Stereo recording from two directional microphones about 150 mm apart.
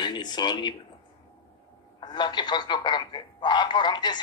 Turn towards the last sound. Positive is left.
turn(degrees=30)  # may be behind; listen again after turning